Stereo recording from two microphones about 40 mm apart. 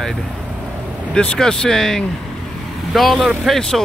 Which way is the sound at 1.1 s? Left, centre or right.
Left.